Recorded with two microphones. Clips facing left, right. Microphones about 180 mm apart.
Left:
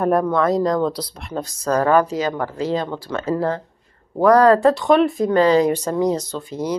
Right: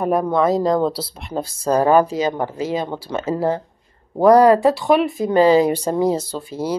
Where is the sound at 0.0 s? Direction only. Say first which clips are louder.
Even; centre (ahead or behind).